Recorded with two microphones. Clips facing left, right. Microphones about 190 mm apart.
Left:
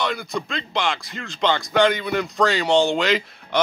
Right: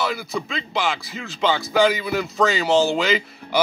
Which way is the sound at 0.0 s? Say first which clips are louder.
Even; 5° right (ahead or behind).